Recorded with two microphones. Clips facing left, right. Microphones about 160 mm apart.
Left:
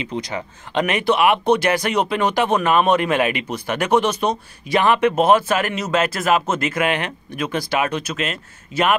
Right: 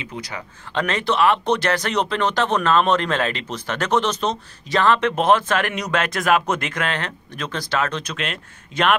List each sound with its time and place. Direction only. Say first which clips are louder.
0.1 s speech: left 6 dB; 30° left (ahead or behind)
0.7 s speech: left 2 dB; 15° left (ahead or behind)